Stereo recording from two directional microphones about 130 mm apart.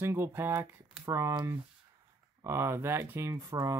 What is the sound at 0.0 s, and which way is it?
Speech, 20° right (ahead or behind).